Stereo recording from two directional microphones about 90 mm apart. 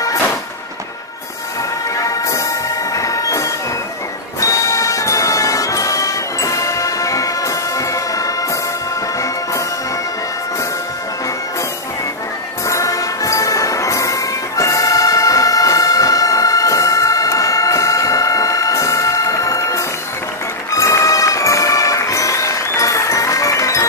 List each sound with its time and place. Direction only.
2.0 s music: 35° left (ahead or behind)
2.9 s train: 40° left (ahead or behind)
4.4 s music: 35° left (ahead or behind)
12.6 s music: 35° left (ahead or behind)